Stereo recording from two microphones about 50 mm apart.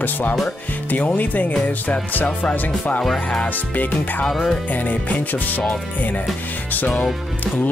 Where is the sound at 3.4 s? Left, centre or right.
Left.